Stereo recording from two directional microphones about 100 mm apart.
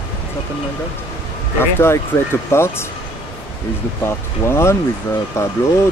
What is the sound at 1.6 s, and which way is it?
Speech, 25° left (ahead or behind).